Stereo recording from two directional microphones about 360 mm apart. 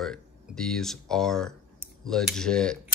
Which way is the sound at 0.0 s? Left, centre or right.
Centre.